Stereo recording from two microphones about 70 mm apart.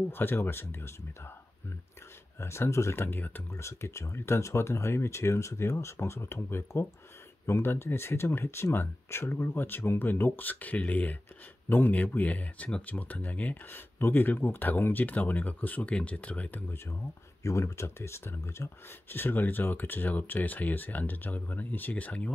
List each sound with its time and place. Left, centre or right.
0.1 s speech: left
2.4 s speech: left
3.5 s speech: left
17.4 s speech: left